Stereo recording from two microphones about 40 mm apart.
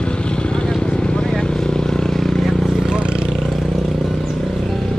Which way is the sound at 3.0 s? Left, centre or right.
Right.